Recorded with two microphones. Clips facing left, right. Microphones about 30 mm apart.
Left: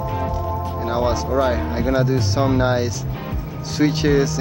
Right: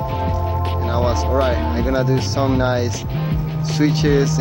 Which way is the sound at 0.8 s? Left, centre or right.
Centre.